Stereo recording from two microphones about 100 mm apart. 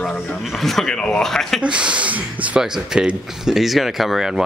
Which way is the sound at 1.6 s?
10° right (ahead or behind).